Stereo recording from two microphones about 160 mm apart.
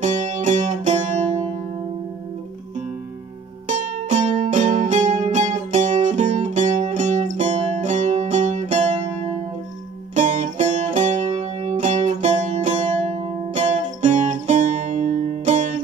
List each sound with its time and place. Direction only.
0.0 s music: 50° right (ahead or behind)
3.6 s music: 50° right (ahead or behind)
10.1 s music: 50° right (ahead or behind)